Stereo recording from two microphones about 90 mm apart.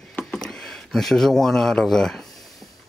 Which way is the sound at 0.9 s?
5° left (ahead or behind).